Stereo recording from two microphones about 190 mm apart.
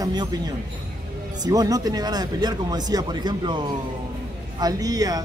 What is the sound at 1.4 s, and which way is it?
Speech, 20° right (ahead or behind).